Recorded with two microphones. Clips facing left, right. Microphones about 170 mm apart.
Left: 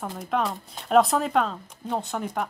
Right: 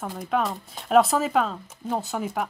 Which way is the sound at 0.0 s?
Centre (ahead or behind).